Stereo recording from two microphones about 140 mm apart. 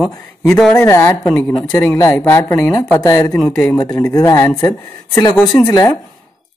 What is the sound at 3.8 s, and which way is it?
Speech, 25° left (ahead or behind).